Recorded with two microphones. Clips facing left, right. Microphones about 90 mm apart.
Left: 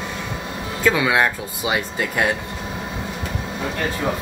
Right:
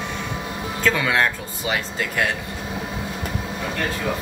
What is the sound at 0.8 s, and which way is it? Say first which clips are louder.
Speech: left 3 dB; 10° left (ahead or behind).